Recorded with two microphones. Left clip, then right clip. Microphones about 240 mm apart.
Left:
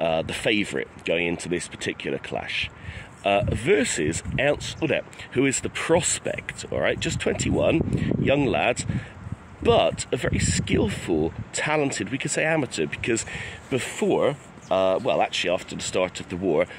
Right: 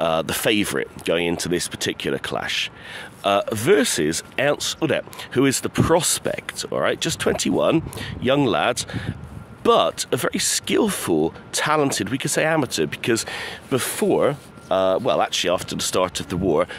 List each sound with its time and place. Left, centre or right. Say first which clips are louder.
0.0 s speech: right 3 dB; right